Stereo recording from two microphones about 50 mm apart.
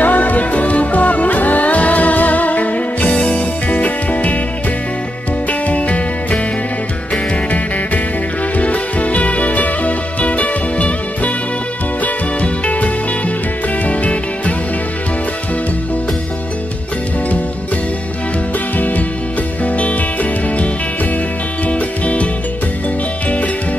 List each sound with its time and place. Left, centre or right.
0.0 s music: left
3.1 s music: left
5.5 s music: left
8.5 s music: left
18.8 s music: left